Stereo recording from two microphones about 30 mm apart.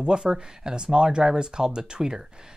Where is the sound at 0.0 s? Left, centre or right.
Right.